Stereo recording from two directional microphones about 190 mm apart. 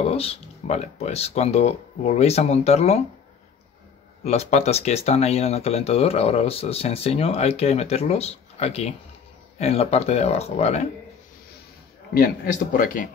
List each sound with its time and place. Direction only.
0.0 s speech: 30° left (ahead or behind)
4.2 s speech: 35° left (ahead or behind)
12.1 s a man's voice: 50° left (ahead or behind)